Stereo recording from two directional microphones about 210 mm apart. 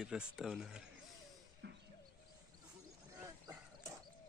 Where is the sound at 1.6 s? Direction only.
55° right (ahead or behind).